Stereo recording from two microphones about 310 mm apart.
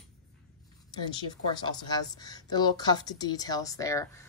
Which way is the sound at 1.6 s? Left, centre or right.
Centre.